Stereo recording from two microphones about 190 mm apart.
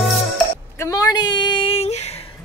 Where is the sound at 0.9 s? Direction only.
20° left (ahead or behind).